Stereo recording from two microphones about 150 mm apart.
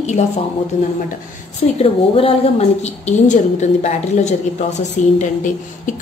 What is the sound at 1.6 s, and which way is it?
A woman's voice, 40° left (ahead or behind).